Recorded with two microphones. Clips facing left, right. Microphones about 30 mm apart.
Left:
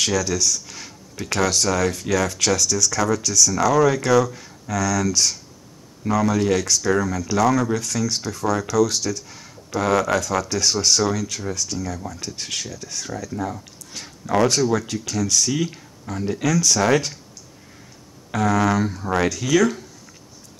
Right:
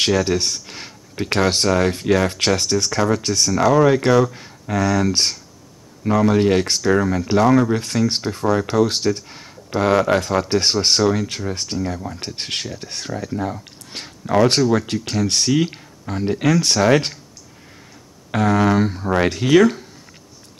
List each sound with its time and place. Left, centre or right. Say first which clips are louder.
0.0 s speech: right 3 dB; right
18.3 s speech: right 3 dB; right